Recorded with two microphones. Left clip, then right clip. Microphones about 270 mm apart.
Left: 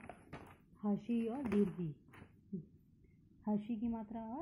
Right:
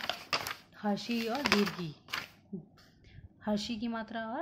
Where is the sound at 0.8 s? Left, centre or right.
Centre.